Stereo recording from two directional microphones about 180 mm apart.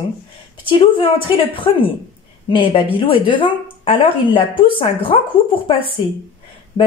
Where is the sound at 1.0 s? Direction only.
30° left (ahead or behind).